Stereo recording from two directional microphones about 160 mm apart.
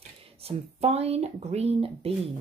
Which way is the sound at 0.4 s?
40° right (ahead or behind).